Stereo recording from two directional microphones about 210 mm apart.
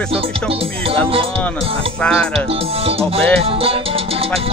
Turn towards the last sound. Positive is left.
turn(degrees=-25)  # may be behind; listen again after turning